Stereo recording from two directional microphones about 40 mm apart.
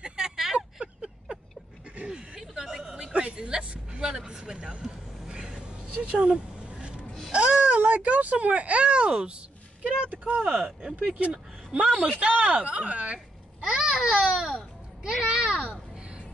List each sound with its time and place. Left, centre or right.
0.0 s a sound: centre
3.2 s a woman's voice: right
4.7 s vehicle: centre
6.0 s a sound: right
7.7 s speech: right
10.0 s speech: right
10.4 s speech: centre
11.1 s a child's voice: right
13.7 s babbling: centre
15.0 s a sound: centre